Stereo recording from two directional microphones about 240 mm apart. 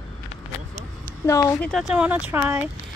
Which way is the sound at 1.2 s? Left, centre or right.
Centre.